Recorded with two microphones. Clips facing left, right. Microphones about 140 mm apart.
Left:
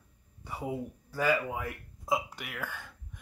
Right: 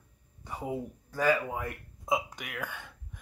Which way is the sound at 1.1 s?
10° left (ahead or behind).